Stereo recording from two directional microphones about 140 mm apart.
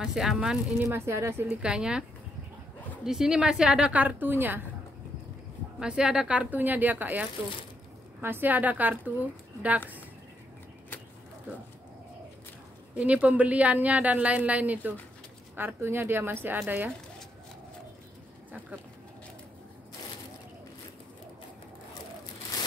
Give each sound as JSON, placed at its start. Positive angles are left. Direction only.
{"t": 0.0, "sound": "speech", "side_deg": -5}
{"t": 0.7, "sound": "a woman's voice", "side_deg": -20}
{"t": 3.1, "sound": "a woman's voice", "side_deg": -5}
{"t": 5.8, "sound": "a woman's voice", "side_deg": -5}
{"t": 12.9, "sound": "a woman's voice", "side_deg": -10}